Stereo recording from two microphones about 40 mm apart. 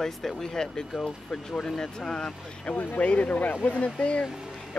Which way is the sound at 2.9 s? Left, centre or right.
Left.